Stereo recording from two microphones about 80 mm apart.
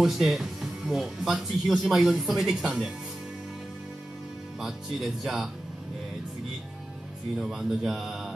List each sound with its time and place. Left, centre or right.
0.0 s speech: centre
4.6 s speech: centre
7.3 s speech: centre